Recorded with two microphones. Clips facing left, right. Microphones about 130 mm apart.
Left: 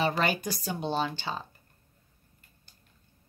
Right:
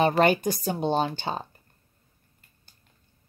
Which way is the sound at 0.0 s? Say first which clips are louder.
Right 7 dB; 50° right (ahead or behind).